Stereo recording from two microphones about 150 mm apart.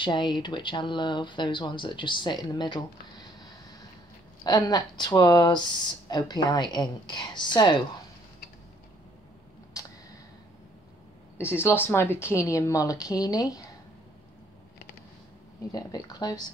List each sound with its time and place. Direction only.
0.0 s speech: 30° left (ahead or behind)
4.4 s a woman's voice: 25° left (ahead or behind)
9.8 s a sound: 25° left (ahead or behind)
11.3 s a woman's voice: 15° left (ahead or behind)
15.7 s a woman's voice: 25° left (ahead or behind)